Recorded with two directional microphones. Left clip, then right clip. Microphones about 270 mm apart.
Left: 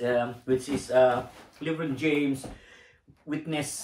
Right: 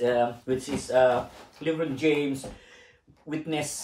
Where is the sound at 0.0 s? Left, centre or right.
Centre.